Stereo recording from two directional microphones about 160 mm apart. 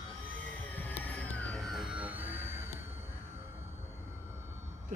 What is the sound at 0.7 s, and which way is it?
Music, 10° left (ahead or behind).